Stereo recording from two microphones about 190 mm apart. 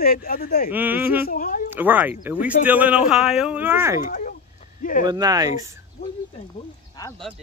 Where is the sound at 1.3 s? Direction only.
45° left (ahead or behind).